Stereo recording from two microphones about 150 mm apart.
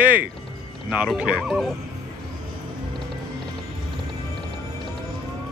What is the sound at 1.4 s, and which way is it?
Speech, centre (ahead or behind).